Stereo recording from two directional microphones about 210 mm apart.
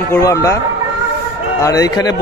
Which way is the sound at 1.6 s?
15° left (ahead or behind).